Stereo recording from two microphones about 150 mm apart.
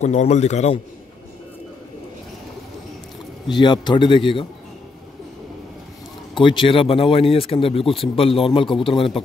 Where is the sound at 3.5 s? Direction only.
30° left (ahead or behind).